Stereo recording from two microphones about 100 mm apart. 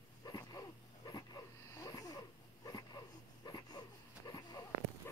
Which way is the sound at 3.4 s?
40° left (ahead or behind).